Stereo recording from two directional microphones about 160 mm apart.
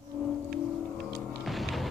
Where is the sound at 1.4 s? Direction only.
Centre (ahead or behind).